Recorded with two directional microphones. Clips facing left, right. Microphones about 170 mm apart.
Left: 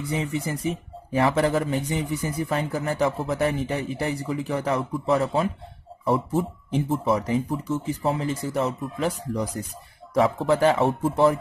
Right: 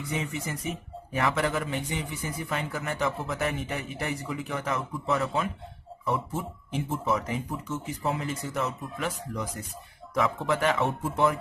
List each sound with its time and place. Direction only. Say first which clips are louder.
0.1 s speech: left 5 dB; 35° left (ahead or behind)